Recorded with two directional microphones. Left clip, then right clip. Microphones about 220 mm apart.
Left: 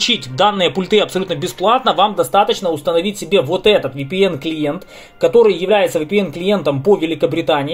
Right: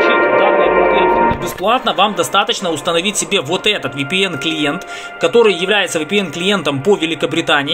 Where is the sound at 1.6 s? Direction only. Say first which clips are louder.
Left 1 dB; 5° right (ahead or behind).